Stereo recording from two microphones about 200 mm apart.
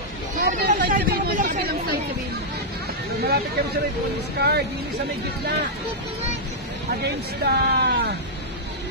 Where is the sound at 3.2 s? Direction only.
50° right (ahead or behind).